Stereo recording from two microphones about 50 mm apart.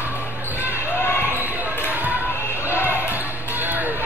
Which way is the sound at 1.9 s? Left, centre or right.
Right.